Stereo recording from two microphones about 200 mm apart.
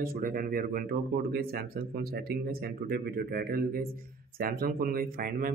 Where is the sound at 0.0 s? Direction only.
45° right (ahead or behind).